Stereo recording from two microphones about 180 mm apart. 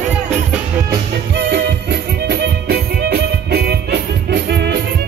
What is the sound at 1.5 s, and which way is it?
Music, 65° right (ahead or behind).